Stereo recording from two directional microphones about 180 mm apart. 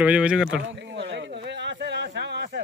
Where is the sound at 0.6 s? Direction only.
75° right (ahead or behind).